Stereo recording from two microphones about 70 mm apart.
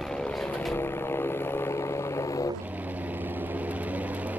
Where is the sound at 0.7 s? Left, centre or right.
Left.